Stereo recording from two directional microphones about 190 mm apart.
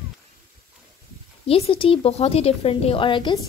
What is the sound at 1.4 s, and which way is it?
A woman's voice, 30° left (ahead or behind).